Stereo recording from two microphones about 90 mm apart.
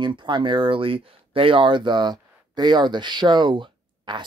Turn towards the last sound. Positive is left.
turn(degrees=-60)  # may be behind; listen again after turning